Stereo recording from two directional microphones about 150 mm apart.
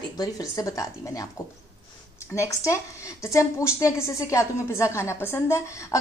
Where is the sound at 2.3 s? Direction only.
20° left (ahead or behind).